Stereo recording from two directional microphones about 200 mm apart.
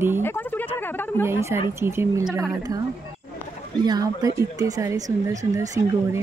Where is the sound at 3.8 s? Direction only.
20° right (ahead or behind).